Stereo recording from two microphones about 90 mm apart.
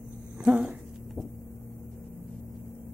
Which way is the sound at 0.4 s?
5° right (ahead or behind).